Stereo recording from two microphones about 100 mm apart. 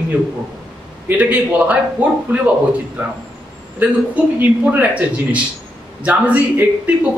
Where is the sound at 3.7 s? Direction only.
15° right (ahead or behind).